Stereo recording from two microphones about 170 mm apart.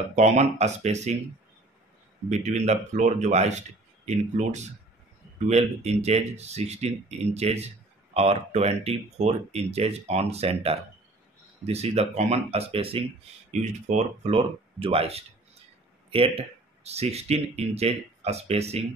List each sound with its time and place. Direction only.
0.1 s speech: 40° right (ahead or behind)
2.2 s speech: 40° right (ahead or behind)